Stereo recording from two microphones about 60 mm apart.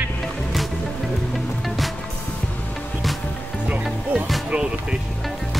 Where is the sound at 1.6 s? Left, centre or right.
Centre.